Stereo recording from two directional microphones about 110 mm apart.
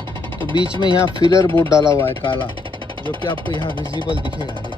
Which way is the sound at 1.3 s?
25° left (ahead or behind).